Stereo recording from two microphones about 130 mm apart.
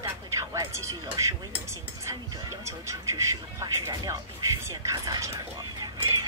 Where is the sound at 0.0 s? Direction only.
25° right (ahead or behind).